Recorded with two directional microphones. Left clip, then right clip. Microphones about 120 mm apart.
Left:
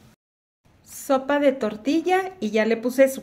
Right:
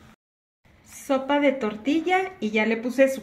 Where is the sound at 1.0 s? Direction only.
60° left (ahead or behind).